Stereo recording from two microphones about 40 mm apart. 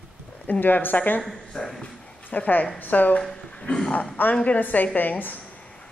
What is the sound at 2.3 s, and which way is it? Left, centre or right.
Speech, left.